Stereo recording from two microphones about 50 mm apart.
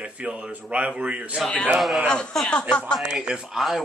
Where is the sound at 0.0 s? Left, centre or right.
Right.